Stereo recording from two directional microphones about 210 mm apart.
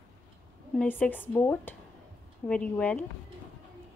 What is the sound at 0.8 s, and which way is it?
Speech, 10° left (ahead or behind).